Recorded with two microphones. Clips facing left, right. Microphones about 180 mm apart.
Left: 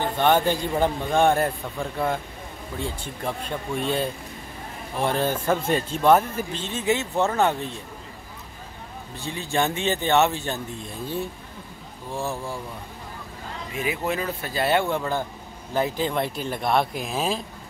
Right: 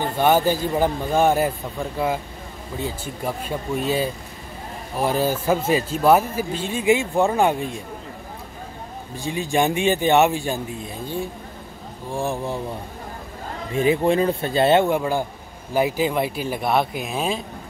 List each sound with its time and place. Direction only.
0.0 s a man's voice: 5° right (ahead or behind)
9.1 s speech: 15° right (ahead or behind)
12.1 s speech: 15° right (ahead or behind)
13.7 s speech: 30° right (ahead or behind)
14.9 s a man's voice: 10° right (ahead or behind)